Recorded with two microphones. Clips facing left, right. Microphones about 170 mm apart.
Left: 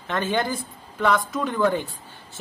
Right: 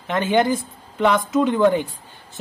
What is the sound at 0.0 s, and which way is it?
A woman's voice, 20° right (ahead or behind).